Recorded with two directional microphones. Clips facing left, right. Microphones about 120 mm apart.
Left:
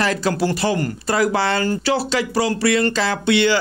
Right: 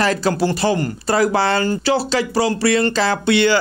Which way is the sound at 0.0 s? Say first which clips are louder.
Right 2 dB; 35° right (ahead or behind).